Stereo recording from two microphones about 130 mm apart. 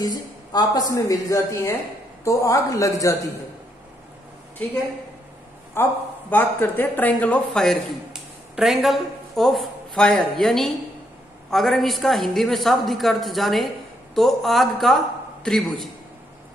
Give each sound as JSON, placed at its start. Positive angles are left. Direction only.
{"t": 0.0, "sound": "speech", "side_deg": 35}
{"t": 5.8, "sound": "a man's voice", "side_deg": 20}